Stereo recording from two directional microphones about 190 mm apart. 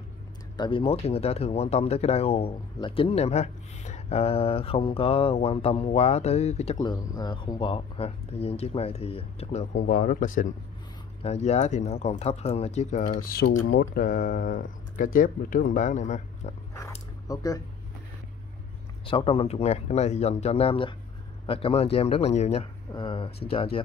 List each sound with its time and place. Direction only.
0.6 s speech: 25° left (ahead or behind)
6.8 s speech: 20° left (ahead or behind); by 16.5 s 40° left (ahead or behind)
17.3 s speech: 20° left (ahead or behind)
19.0 s speech: 30° left (ahead or behind)